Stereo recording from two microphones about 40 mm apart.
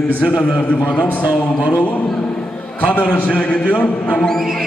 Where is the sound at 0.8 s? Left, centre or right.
Left.